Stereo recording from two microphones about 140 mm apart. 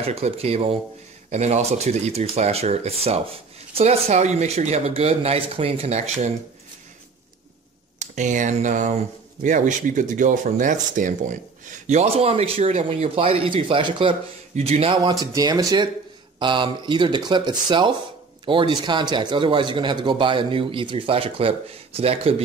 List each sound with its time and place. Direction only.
0.0 s speech: 45° right (ahead or behind)
1.3 s speech: 55° right (ahead or behind)
8.0 s speech: 65° right (ahead or behind); by 14.1 s 35° right (ahead or behind)
14.5 s speech: 45° right (ahead or behind)
15.1 s speech: 30° right (ahead or behind)